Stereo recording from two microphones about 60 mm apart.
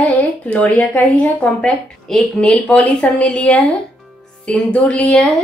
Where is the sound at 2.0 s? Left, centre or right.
Centre.